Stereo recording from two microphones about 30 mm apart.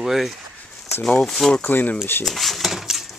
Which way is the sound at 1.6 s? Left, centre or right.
Left.